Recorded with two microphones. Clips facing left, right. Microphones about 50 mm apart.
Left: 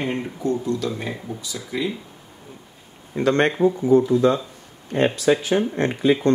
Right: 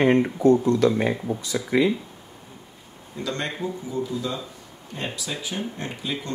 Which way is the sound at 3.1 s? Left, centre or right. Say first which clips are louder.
Left 11 dB; left.